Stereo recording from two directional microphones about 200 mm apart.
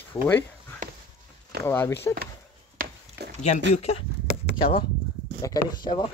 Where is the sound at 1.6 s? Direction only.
15° left (ahead or behind).